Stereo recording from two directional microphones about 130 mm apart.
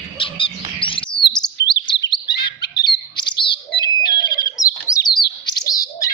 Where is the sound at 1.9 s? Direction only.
35° left (ahead or behind).